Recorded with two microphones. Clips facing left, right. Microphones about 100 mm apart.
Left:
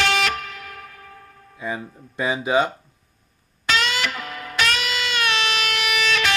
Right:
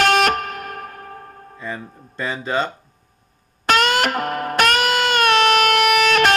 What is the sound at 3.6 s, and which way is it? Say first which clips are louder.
Music: right 6 dB; 55° right (ahead or behind).